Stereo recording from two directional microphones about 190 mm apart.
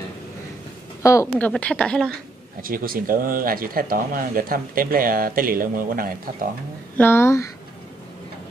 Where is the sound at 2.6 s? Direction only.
50° right (ahead or behind).